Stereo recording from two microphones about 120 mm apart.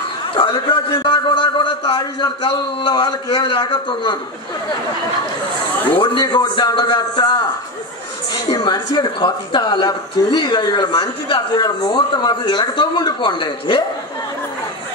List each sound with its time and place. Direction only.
0.4 s speech: 45° left (ahead or behind)
5.9 s speech: 40° left (ahead or behind)
8.5 s speech: 40° left (ahead or behind)